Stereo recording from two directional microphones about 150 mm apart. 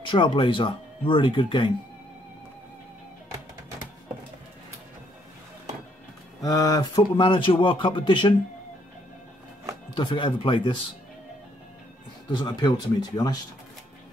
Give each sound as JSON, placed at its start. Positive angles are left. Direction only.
{"t": 0.0, "sound": "speech", "side_deg": 35}
{"t": 6.4, "sound": "speech", "side_deg": 25}
{"t": 9.9, "sound": "speech", "side_deg": 30}
{"t": 12.3, "sound": "speech", "side_deg": 30}